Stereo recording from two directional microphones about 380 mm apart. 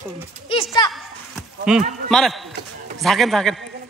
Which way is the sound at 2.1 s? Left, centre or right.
Centre.